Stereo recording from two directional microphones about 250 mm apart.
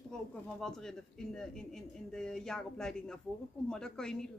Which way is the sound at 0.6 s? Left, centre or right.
Centre.